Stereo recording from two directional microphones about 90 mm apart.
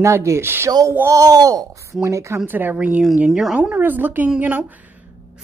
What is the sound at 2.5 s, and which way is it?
A woman's voice, 20° right (ahead or behind).